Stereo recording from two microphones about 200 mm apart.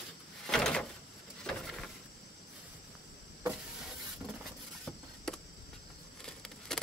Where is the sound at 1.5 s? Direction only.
Centre (ahead or behind).